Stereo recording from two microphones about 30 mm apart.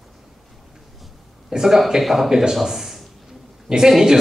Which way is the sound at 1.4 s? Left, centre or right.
Centre.